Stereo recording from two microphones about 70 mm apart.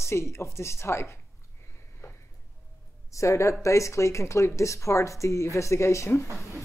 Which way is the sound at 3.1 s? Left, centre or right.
Left.